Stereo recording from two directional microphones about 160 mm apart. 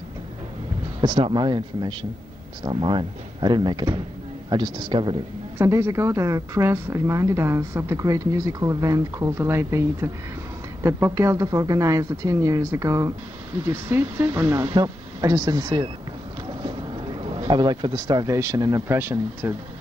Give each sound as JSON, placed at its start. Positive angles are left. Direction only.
{"t": 1.0, "sound": "a woman's voice", "side_deg": -30}
{"t": 5.6, "sound": "a woman's voice", "side_deg": -15}
{"t": 17.4, "sound": "a woman's voice", "side_deg": -30}